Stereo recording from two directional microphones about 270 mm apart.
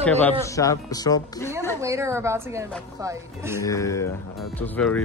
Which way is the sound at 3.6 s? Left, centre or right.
Centre.